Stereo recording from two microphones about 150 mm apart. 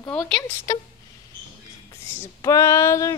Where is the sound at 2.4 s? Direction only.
20° left (ahead or behind).